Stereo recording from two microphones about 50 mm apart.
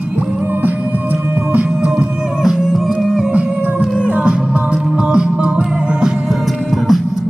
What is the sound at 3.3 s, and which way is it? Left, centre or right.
Music, right.